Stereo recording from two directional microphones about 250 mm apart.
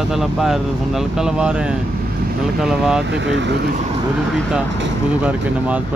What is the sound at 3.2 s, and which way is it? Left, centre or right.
Speech, right.